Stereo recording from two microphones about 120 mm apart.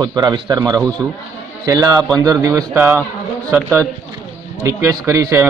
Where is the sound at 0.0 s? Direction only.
35° right (ahead or behind); by 3.0 s 20° right (ahead or behind).